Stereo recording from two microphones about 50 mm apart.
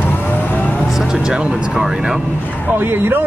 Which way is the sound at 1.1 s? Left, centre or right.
Centre.